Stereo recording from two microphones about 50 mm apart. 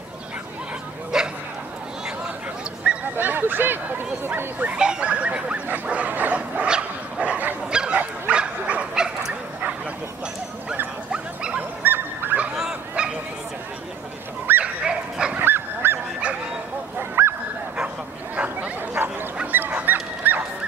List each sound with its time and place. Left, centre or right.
1.1 s a sound: centre
2.9 s honk: right
3.2 s speech: right
4.7 s speech: centre
5.9 s bow-wow: right
11.1 s dog: centre
11.8 s goose: right
12.5 s fowl: centre
14.6 s dog: centre
15.3 s goose: right
17.2 s goose: right
18.3 s a sound: right
19.4 s dog: right